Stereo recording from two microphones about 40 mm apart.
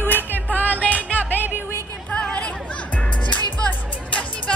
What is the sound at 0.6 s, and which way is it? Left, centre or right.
Music, left.